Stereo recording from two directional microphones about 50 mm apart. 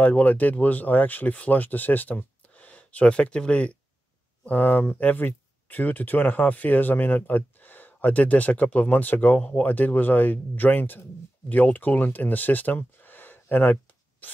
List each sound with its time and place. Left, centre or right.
0.0 s speech: left
4.5 s speech: left